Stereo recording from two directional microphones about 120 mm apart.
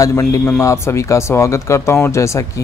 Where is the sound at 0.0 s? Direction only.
25° left (ahead or behind).